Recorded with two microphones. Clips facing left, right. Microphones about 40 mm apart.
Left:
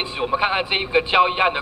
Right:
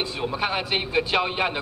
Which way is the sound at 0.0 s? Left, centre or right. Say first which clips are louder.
Left 5 dB; left.